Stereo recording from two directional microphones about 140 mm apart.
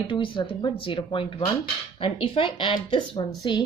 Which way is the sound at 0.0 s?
35° left (ahead or behind).